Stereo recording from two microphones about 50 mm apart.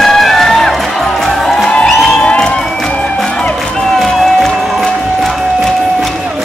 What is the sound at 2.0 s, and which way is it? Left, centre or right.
Crowd, centre.